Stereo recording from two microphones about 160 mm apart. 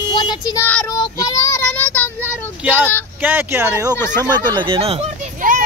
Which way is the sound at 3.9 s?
15° left (ahead or behind).